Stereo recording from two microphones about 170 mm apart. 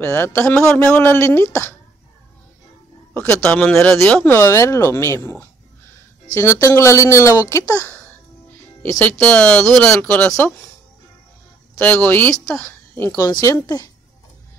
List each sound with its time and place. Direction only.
0.0 s speech: 15° left (ahead or behind)
3.1 s speech: 10° left (ahead or behind)
11.8 s speech: 10° left (ahead or behind)